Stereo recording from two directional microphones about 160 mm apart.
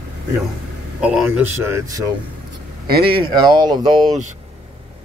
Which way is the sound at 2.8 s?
80° right.